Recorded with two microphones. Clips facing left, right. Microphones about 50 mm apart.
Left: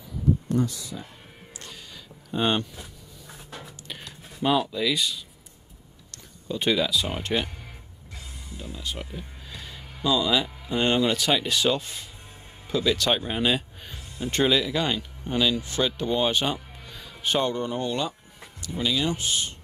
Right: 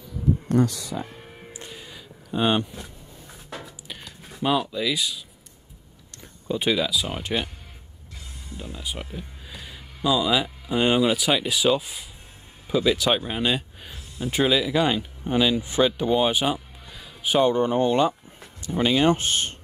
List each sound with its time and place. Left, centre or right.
0.5 s speech: right
1.6 s music: centre
2.3 s speech: centre
3.8 s music: centre
6.5 s speech: centre
8.5 s speech: centre
17.5 s speech: right